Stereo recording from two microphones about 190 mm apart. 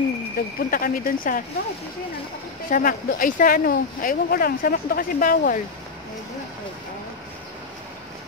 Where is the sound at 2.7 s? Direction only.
50° left (ahead or behind).